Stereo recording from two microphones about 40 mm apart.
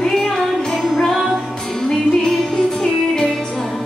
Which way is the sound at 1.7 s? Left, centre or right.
Centre.